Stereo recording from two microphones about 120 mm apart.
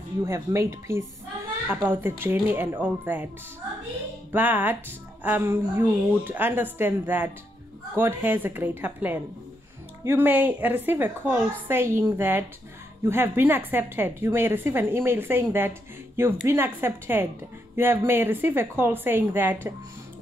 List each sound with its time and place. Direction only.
0.2 s a woman's voice: 25° right (ahead or behind)
4.3 s a woman's voice: 15° right (ahead or behind)